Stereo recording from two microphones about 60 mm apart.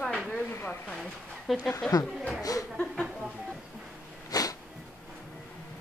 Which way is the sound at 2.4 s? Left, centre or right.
Left.